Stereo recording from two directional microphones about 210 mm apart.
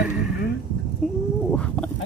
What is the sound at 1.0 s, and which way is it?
Chicken, centre (ahead or behind).